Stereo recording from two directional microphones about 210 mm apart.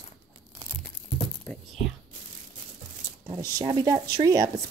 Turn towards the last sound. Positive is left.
turn(degrees=-15)  # may be behind; listen again after turning